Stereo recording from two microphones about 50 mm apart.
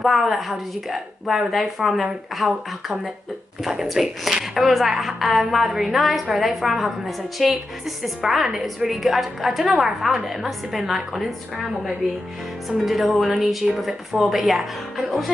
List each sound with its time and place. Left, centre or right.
0.0 s a woman's voice: centre
9.8 s a woman's voice: centre